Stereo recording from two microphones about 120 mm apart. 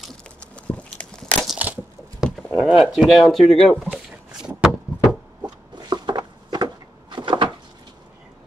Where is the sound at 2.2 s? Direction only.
5° right (ahead or behind).